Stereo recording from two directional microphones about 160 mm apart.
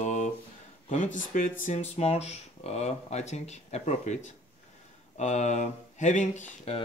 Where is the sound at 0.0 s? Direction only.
50° left (ahead or behind).